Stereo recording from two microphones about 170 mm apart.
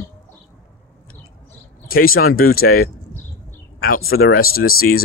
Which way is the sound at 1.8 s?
60° left (ahead or behind).